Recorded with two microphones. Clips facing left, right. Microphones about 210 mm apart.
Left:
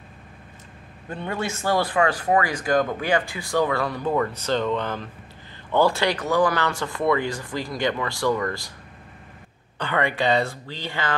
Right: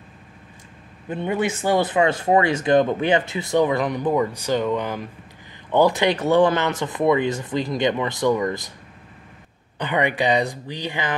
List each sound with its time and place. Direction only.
1.0 s speech: 20° right (ahead or behind)
9.8 s speech: 15° right (ahead or behind)